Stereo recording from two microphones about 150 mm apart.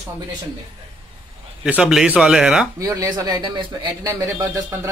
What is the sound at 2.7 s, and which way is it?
A man's voice, 20° right (ahead or behind).